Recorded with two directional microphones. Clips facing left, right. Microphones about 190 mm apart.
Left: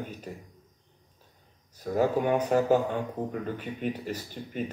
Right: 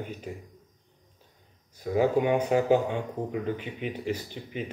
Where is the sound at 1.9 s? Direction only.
10° right (ahead or behind).